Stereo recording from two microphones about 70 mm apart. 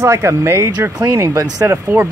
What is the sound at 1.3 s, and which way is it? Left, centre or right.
Speech, right.